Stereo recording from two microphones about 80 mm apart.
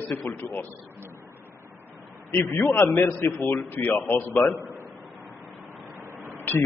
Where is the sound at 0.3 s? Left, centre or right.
Left.